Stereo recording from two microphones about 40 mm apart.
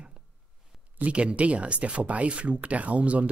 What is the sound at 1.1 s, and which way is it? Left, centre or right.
Speech, right.